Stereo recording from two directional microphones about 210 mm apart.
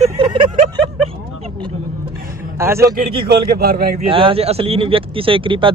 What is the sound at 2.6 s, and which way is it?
Speech, 10° right (ahead or behind).